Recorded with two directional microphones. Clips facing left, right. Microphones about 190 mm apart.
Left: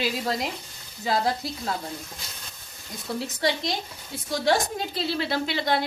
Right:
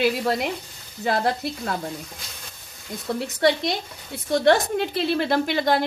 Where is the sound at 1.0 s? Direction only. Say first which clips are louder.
Right 2 dB; 60° right (ahead or behind).